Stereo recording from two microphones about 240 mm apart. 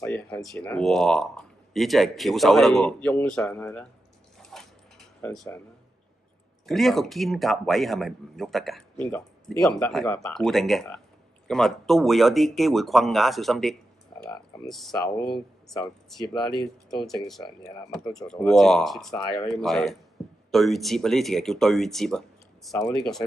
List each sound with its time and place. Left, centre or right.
0.0 s speech: centre
4.4 s a sound: centre
6.6 s speech: centre
15.0 s speech: centre
18.1 s speech: centre
20.2 s a sound: centre
20.5 s speech: centre
22.8 s speech: centre